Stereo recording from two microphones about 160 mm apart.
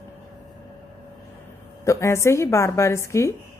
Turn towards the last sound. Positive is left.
turn(degrees=15)  # may be behind; listen again after turning